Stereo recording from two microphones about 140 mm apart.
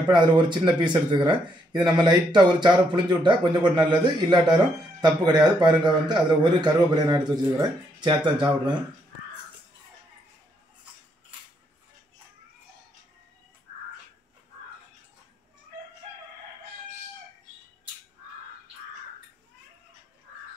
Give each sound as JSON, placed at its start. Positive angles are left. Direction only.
{"t": 0.1, "sound": "a man's voice", "side_deg": -30}